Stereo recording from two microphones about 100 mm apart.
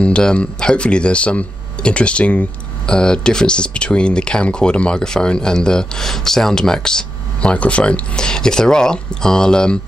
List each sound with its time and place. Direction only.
0.0 s speech: 10° left (ahead or behind)